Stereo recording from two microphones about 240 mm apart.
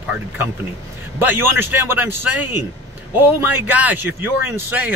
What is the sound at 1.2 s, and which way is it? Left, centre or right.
A man's voice, centre.